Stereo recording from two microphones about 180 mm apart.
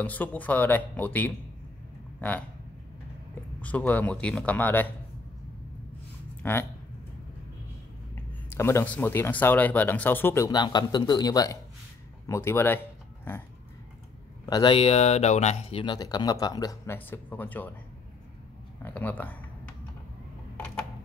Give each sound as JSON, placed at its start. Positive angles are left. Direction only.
{"t": 0.0, "sound": "speech", "side_deg": 10}
{"t": 3.6, "sound": "speech", "side_deg": 10}
{"t": 6.4, "sound": "speech", "side_deg": 10}
{"t": 8.5, "sound": "speech", "side_deg": 15}
{"t": 14.4, "sound": "speech", "side_deg": 25}
{"t": 18.8, "sound": "speech", "side_deg": 10}